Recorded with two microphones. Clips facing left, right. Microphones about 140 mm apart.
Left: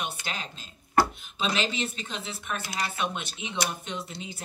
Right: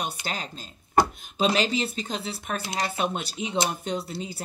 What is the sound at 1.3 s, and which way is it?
Speech, 40° right (ahead or behind).